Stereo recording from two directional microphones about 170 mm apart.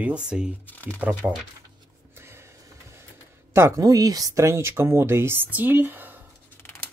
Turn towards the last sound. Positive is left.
turn(degrees=-10)  # may be behind; listen again after turning